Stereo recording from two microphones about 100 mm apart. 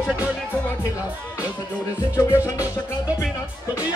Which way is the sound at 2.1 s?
30° left (ahead or behind).